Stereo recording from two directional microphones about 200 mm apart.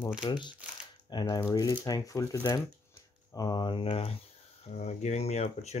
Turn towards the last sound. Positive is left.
turn(degrees=35)  # may be behind; listen again after turning